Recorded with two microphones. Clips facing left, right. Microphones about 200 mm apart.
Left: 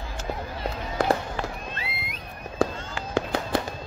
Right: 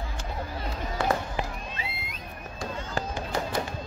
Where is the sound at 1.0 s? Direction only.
40° left (ahead or behind).